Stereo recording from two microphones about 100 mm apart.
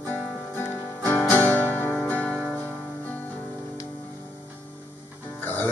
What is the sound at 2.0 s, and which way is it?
Music, 15° left (ahead or behind).